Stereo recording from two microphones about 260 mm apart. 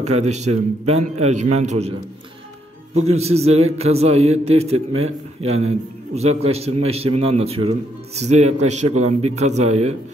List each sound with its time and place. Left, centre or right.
0.0 s a man's voice: right
3.2 s a man's voice: right